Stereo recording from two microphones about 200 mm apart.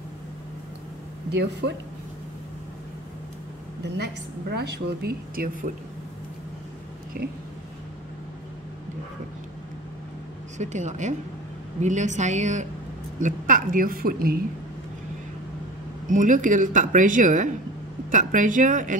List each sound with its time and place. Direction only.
1.3 s a woman's voice: 55° right (ahead or behind)
3.8 s a woman's voice: 60° right (ahead or behind)
7.2 s a woman's voice: 50° right (ahead or behind)
10.6 s a woman's voice: 35° right (ahead or behind)
16.1 s speech: 40° right (ahead or behind)